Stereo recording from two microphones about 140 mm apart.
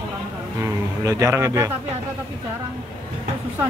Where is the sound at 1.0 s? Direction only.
25° right (ahead or behind).